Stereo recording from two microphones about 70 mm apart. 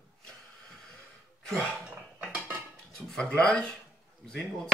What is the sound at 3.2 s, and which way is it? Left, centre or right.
Speech, centre.